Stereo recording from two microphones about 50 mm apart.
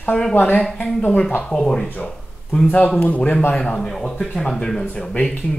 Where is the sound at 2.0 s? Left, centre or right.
Left.